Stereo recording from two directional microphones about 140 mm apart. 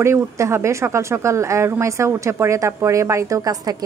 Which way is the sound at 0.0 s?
20° right (ahead or behind).